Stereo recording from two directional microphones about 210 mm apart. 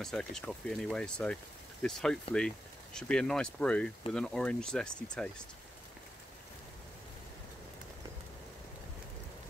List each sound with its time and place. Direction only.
0.0 s speech: 5° left (ahead or behind)